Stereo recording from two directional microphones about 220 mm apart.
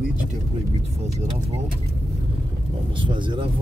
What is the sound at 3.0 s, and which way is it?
Speech, 20° right (ahead or behind).